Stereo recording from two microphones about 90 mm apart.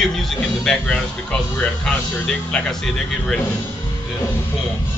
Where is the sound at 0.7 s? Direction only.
5° left (ahead or behind).